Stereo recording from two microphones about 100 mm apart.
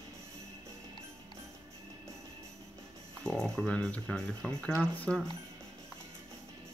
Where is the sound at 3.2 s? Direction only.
5° left (ahead or behind).